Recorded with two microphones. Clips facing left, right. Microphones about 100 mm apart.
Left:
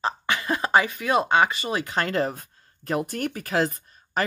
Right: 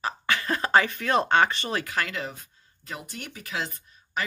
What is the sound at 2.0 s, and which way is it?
Speech, 40° left (ahead or behind).